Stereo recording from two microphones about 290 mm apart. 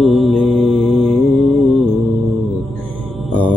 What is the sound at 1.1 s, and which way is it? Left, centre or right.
Music, centre.